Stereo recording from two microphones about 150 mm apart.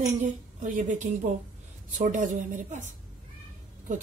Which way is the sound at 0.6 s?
60° right (ahead or behind).